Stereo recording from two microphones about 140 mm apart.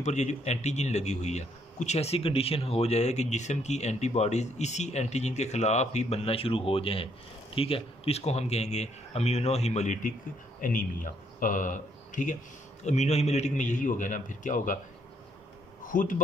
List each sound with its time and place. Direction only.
0.0 s a man's voice: 55° left (ahead or behind)
10.6 s speech: 70° left (ahead or behind)
12.8 s a man's voice: 55° left (ahead or behind)
15.9 s a man's voice: 70° left (ahead or behind)